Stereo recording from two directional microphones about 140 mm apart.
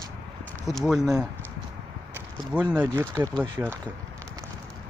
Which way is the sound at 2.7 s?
20° right (ahead or behind).